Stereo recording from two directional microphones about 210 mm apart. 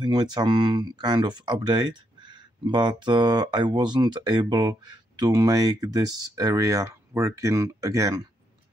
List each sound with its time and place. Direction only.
0.0 s speech: 20° right (ahead or behind)